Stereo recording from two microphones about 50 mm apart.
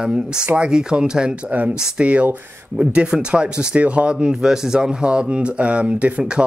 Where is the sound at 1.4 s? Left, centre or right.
Right.